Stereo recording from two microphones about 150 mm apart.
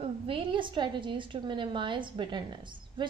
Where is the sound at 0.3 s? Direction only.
35° right (ahead or behind).